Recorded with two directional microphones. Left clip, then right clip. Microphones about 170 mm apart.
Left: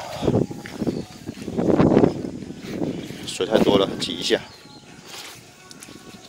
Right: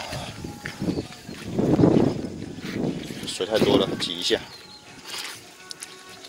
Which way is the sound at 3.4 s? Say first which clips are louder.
Left 3 dB; 85° left.